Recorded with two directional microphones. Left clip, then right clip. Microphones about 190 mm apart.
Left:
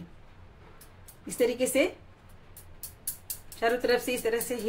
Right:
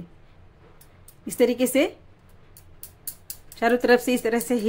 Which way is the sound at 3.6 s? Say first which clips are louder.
Right 7 dB; 50° right (ahead or behind).